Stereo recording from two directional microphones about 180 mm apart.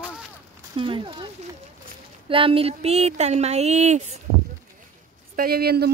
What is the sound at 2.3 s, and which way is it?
Speech, 30° right (ahead or behind).